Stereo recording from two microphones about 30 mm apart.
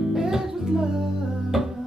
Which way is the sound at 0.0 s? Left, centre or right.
Centre.